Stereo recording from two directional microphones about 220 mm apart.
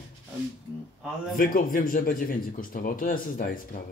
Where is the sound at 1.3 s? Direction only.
35° left (ahead or behind).